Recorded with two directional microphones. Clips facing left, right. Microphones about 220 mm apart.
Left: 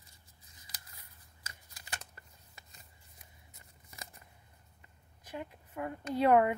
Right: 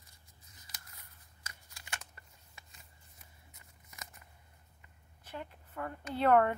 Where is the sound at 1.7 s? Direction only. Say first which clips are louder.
Left 1 dB; 35° left (ahead or behind).